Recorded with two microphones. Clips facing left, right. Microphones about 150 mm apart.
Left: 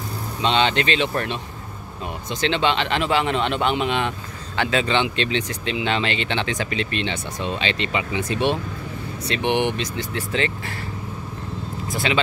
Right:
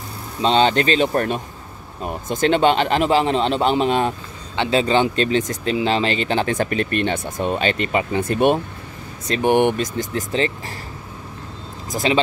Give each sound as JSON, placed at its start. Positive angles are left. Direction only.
{"t": 0.4, "sound": "speech", "side_deg": -40}
{"t": 11.9, "sound": "speech", "side_deg": -40}